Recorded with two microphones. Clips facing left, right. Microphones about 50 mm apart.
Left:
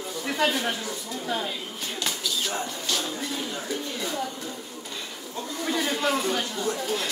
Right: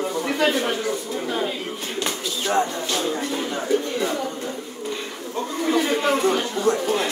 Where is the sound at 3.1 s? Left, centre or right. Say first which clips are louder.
Right 6 dB; right.